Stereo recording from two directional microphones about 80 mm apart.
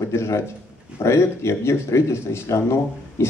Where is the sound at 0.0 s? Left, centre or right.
Left.